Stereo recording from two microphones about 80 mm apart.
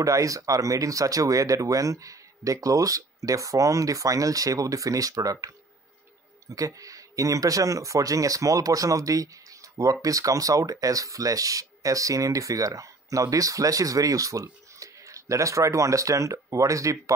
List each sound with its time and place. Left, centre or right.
0.0 s speech: right